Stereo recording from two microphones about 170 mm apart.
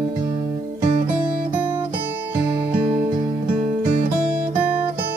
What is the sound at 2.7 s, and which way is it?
Music, 30° right (ahead or behind).